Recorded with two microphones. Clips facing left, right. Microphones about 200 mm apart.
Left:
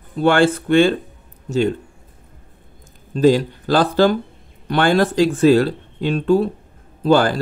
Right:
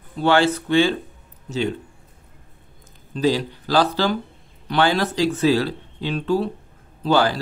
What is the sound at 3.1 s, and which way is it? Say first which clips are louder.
Speech: left 6 dB; 50° left (ahead or behind).